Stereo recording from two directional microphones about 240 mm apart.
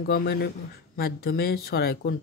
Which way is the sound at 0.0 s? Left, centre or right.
Left.